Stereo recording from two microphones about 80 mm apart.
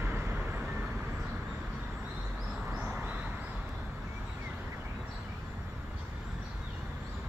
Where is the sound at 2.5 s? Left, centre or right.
Centre.